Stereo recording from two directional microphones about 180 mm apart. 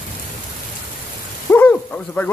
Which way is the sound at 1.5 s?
10° left (ahead or behind).